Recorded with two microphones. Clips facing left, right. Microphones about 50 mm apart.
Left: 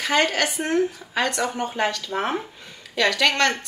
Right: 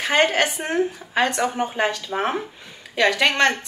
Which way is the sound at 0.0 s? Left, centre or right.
Right.